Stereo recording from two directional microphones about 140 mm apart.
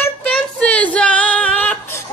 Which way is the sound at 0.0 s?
10° left (ahead or behind).